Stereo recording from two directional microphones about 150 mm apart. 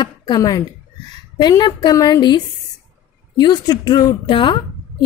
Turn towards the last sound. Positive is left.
turn(degrees=35)  # may be behind; listen again after turning